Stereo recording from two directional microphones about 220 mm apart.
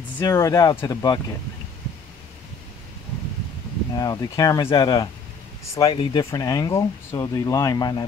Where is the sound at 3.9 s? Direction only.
15° left (ahead or behind).